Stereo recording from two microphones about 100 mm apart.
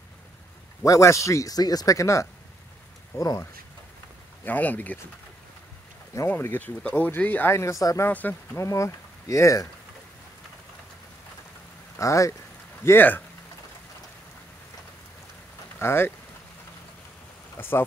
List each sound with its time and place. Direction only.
0.8 s speech: 30° left (ahead or behind)
4.5 s speech: 15° left (ahead or behind)
6.1 s speech: 25° left (ahead or behind)
8.1 s speech: 15° left (ahead or behind)
8.5 s speech: 30° left (ahead or behind)
12.0 s speech: 30° left (ahead or behind)
12.8 s speech: 20° left (ahead or behind)
15.8 s speech: 25° left (ahead or behind)
17.6 s speech: 20° left (ahead or behind)